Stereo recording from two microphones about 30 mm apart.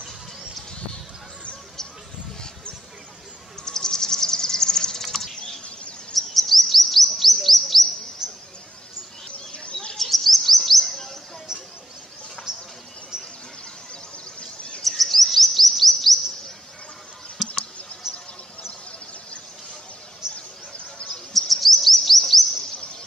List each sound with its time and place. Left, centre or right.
3.6 s insect: centre
5.0 s typing: centre
6.1 s chirp: centre
8.2 s a sound: centre
9.5 s bird: left
9.9 s chirp: centre
12.5 s bird: right
14.8 s chirp: centre
20.3 s a sound: left
21.3 s chirp: centre